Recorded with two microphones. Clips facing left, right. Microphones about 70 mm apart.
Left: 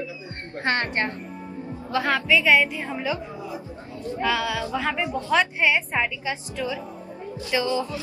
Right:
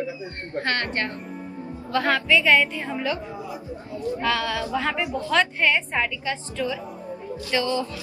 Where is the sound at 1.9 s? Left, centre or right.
Centre.